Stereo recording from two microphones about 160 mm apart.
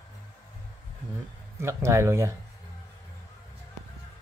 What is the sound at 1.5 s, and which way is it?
Speech, 15° right (ahead or behind).